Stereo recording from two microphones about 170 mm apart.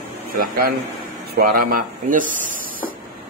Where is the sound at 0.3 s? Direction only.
55° right (ahead or behind).